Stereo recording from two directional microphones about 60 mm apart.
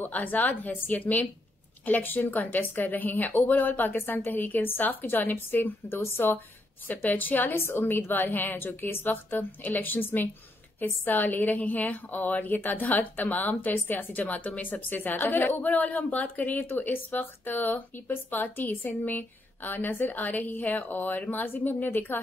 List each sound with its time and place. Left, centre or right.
0.0 s a woman's voice: left
7.5 s a woman's voice: left